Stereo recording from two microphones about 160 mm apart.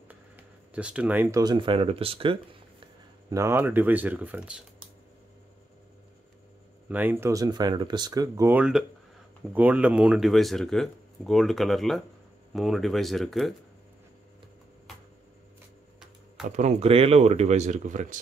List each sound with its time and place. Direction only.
0.7 s speech: 5° right (ahead or behind); by 2.3 s 35° right (ahead or behind)
3.3 s speech: 20° right (ahead or behind)
6.9 s speech: 10° right (ahead or behind)
16.4 s speech: 45° right (ahead or behind)